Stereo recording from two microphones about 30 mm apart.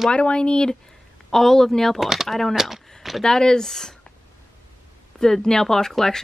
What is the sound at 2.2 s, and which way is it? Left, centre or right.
Speech, centre.